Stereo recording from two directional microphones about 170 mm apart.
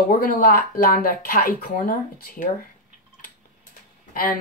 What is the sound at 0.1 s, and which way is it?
Speech, 55° left (ahead or behind).